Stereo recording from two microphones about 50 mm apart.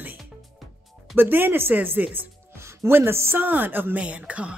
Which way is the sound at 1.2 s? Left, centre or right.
Right.